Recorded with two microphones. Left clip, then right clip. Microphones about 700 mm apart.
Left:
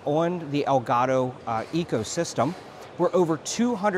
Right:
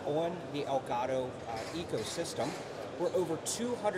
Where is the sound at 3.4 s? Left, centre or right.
Left.